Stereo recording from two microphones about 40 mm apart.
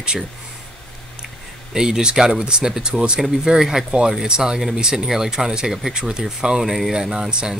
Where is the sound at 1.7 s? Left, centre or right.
Centre.